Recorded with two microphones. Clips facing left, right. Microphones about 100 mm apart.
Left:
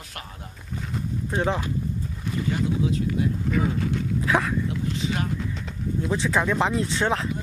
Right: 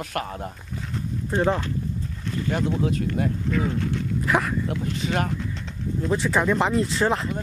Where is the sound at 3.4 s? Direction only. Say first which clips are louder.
Even; 5° left (ahead or behind).